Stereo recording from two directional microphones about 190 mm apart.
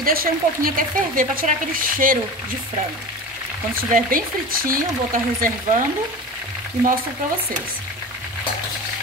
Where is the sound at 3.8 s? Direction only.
45° right (ahead or behind).